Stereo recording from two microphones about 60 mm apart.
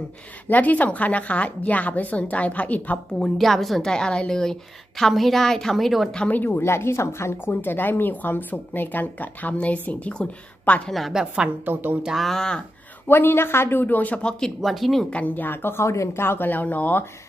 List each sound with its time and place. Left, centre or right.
0.5 s speech: left
3.2 s a woman's voice: centre
6.1 s speech: left
6.6 s speech: left
10.9 s a woman's voice: centre
11.1 s a woman's voice: centre
11.6 s speech: right
12.2 s speech: centre
13.1 s speech: left
14.6 s a woman's voice: centre
15.0 s speech: left